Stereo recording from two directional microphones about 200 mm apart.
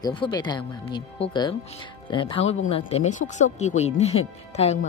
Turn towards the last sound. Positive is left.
turn(degrees=35)  # may be behind; listen again after turning